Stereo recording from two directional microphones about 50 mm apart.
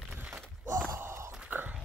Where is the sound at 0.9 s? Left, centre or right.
Right.